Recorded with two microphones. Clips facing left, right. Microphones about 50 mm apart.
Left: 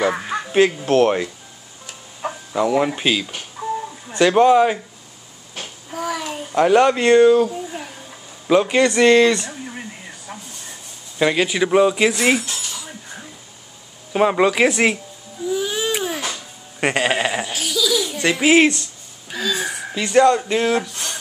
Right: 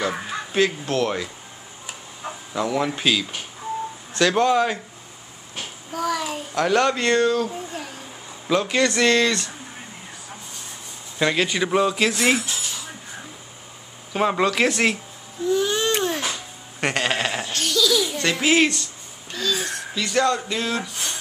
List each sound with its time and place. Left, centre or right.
0.0 s speech: left
2.5 s speech: centre
5.9 s a sound: centre
6.5 s speech: centre
8.5 s speech: centre
11.1 s speech: centre
14.1 s speech: centre
15.4 s baby cry: centre
16.8 s a sound: centre
18.2 s speech: centre
19.3 s a sound: centre
19.9 s speech: left